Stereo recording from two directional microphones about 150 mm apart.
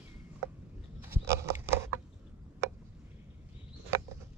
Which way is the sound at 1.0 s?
15° right (ahead or behind).